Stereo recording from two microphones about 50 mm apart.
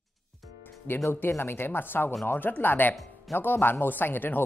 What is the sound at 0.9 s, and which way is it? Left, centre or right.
A man's voice, left.